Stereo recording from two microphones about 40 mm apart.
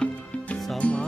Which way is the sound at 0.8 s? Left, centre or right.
Left.